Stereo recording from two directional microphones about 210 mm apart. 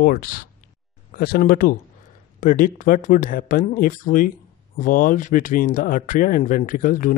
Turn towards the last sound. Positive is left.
turn(degrees=40)  # may be behind; listen again after turning